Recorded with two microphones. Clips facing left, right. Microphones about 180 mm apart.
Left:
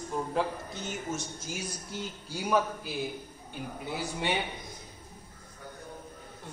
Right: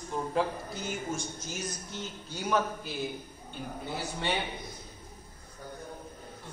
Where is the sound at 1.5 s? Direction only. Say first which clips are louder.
Left 1 dB; 10° left (ahead or behind).